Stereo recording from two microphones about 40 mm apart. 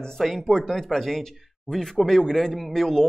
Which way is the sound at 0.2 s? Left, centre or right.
Centre.